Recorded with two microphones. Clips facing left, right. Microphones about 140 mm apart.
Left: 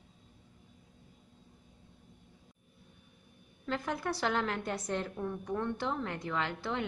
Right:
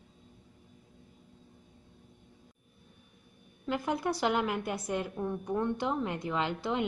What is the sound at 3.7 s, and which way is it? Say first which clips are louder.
A woman's voice: right 3 dB; 15° right (ahead or behind).